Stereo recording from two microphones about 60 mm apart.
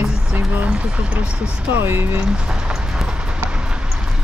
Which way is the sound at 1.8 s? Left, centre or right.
Right.